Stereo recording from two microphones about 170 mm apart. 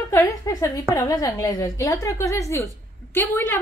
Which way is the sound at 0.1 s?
20° left (ahead or behind).